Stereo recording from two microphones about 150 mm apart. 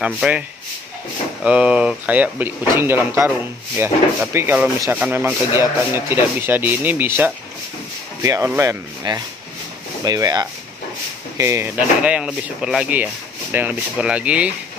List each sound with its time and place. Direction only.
0.0 s speech: 5° right (ahead or behind)
1.4 s speech: 5° right (ahead or behind)